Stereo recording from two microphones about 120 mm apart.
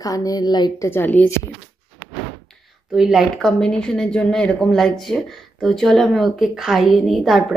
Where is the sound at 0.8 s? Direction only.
15° left (ahead or behind).